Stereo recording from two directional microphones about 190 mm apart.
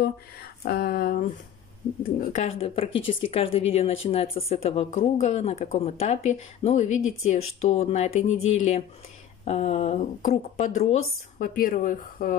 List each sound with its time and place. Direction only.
0.7 s speech: 50° left (ahead or behind)
2.4 s speech: 30° left (ahead or behind)
7.0 s speech: 90° left
7.2 s speech: 35° left (ahead or behind)